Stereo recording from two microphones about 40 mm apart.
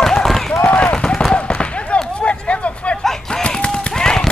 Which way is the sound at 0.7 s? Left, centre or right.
Left.